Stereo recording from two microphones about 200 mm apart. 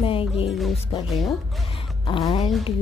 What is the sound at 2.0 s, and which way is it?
Speech, 25° left (ahead or behind).